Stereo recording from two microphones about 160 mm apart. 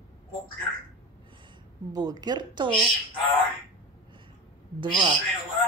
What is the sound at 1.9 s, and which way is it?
Speech, 25° right (ahead or behind).